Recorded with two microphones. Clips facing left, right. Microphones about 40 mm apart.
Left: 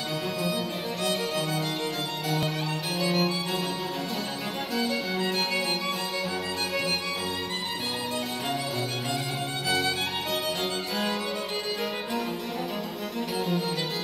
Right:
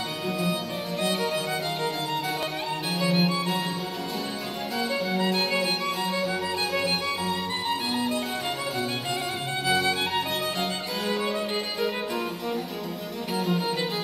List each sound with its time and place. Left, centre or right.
1.0 s music: centre
3.0 s music: centre
4.7 s music: centre
9.7 s music: centre
13.4 s music: centre